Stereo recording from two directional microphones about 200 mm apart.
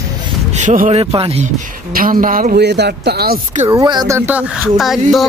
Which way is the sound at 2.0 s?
45° right (ahead or behind).